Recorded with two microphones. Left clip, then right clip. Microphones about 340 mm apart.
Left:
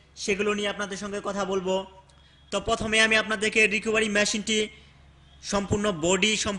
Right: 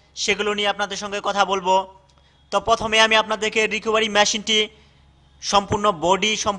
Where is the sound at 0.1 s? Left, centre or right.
Right.